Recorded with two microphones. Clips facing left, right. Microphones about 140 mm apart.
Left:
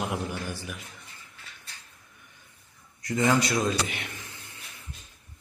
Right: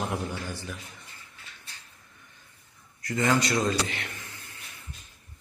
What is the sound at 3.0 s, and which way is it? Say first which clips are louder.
A man's voice: left 1 dB; 15° left (ahead or behind).